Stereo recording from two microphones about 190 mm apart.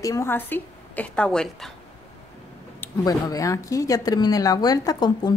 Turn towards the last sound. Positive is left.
turn(degrees=20)  # may be behind; listen again after turning